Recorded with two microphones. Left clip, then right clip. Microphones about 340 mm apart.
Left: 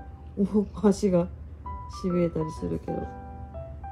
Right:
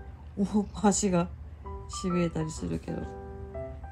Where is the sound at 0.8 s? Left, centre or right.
Right.